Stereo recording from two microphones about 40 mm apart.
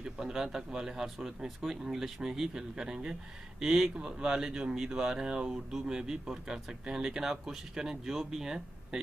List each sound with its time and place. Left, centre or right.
0.0 s a man's voice: centre
3.6 s speech: centre
4.0 s speech: right
8.1 s speech: centre